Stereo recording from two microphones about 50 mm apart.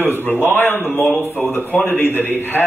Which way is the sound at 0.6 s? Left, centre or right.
Left.